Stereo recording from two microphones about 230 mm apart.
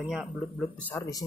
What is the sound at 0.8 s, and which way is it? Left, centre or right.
Speech, centre.